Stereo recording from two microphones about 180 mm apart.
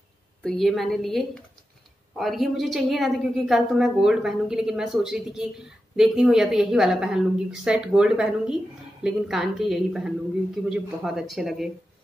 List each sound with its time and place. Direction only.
0.4 s a woman's voice: centre (ahead or behind)